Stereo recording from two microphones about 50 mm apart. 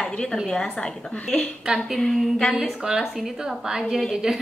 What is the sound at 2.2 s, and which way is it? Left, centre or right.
Speech, centre.